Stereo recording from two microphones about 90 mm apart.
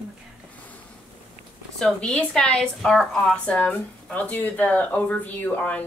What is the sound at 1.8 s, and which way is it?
A woman's voice, 5° left (ahead or behind).